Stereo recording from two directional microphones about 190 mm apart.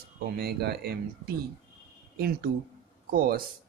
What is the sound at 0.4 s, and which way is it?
Speech, 55° right (ahead or behind).